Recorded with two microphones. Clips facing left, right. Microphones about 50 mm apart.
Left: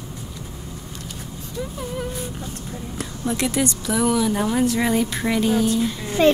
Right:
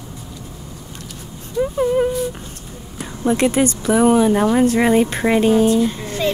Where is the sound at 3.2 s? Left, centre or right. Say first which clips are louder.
Right 7 dB; right.